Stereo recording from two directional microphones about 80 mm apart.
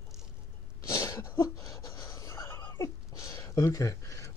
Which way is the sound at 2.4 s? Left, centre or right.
Left.